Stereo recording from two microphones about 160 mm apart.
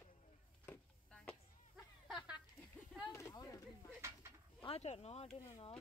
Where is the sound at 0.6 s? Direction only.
5° left (ahead or behind).